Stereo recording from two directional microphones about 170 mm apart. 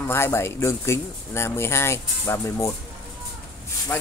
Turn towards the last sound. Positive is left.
turn(degrees=15)  # may be behind; listen again after turning